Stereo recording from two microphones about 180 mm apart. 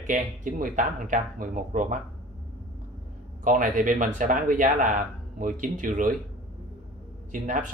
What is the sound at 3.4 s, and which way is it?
Speech, 45° right (ahead or behind).